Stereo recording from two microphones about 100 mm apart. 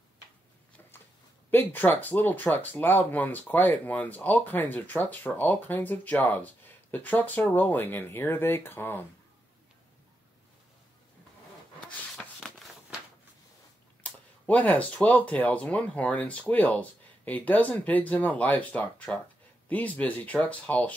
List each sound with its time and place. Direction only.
1.5 s speech: 20° left (ahead or behind)
14.0 s speech: 15° left (ahead or behind)